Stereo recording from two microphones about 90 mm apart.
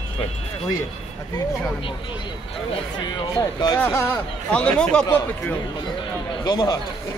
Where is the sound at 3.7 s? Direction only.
25° left (ahead or behind).